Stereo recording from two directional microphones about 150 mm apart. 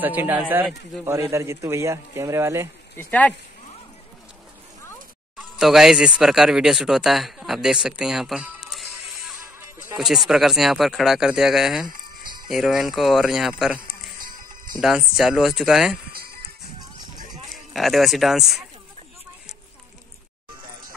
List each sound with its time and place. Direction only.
0.0 s a man's voice: 10° right (ahead or behind)
3.0 s speech: 10° left (ahead or behind)
5.4 s speech: centre (ahead or behind)
12.2 s jingle bell: 30° right (ahead or behind)
12.4 s speech: centre (ahead or behind)
13.8 s music: 70° right (ahead or behind)
14.8 s speech: 5° right (ahead or behind)
16.1 s music: 90° right
17.5 s speech: centre (ahead or behind)